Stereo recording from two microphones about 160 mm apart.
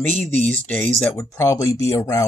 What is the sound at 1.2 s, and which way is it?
Speech, 20° left (ahead or behind).